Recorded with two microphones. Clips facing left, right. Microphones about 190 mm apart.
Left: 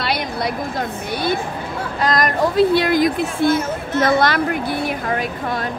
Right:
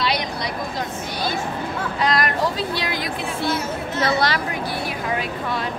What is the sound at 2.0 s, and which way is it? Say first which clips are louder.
Speech: left 3 dB; 45° left (ahead or behind).